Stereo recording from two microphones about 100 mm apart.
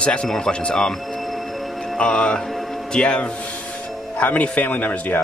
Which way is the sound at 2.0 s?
10° left (ahead or behind).